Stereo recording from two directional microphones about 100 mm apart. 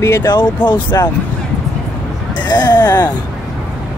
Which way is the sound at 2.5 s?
45° left (ahead or behind).